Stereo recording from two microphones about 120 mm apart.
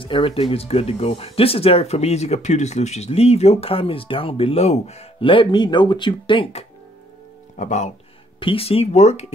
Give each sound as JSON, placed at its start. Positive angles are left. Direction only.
{"t": 0.0, "sound": "speech", "side_deg": 45}
{"t": 5.2, "sound": "speech", "side_deg": 45}
{"t": 7.5, "sound": "speech", "side_deg": 75}
{"t": 8.4, "sound": "speech", "side_deg": 50}